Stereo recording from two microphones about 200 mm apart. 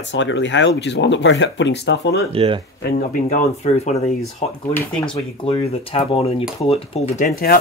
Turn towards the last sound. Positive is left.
turn(degrees=45)  # may be behind; listen again after turning